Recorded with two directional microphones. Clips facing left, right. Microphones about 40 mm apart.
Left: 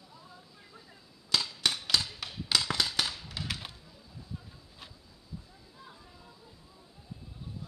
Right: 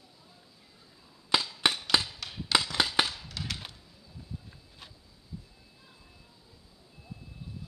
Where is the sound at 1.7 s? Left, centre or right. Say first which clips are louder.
Right 2 dB; centre.